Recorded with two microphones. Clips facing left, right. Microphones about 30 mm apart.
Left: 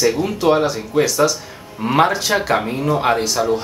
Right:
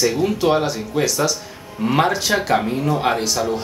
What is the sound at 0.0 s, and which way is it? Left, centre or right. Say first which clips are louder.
Speech: left 1 dB; centre.